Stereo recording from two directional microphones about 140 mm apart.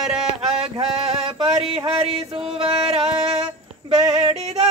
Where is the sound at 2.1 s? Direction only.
45° right (ahead or behind).